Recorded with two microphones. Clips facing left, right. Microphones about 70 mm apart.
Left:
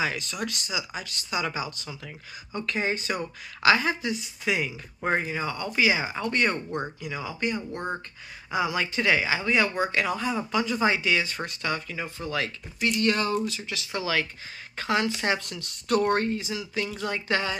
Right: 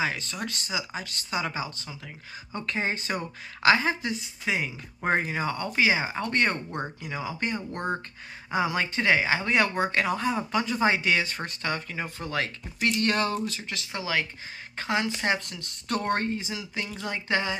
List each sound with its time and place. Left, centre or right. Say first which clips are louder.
0.0 s speech: left 1 dB; right
5.2 s speech: right 1 dB; right
5.5 s speech: even; right
6.5 s speech: left 2 dB; centre
7.2 s speech: left 2 dB; right
13.9 s speech: left 2 dB; right